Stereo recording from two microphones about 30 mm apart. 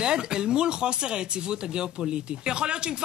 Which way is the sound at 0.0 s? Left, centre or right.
Right.